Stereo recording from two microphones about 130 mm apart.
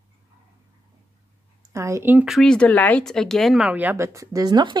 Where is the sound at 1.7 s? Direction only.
20° right (ahead or behind).